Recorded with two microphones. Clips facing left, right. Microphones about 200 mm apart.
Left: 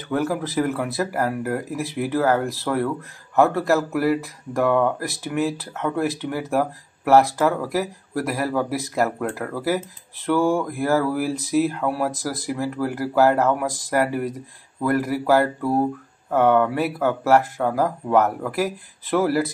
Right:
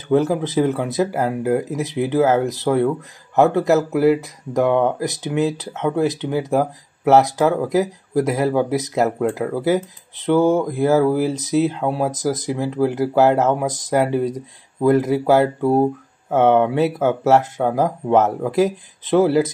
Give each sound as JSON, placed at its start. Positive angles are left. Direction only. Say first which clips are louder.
{"t": 0.1, "sound": "speech", "louder": "right 6 dB", "side_deg": -20}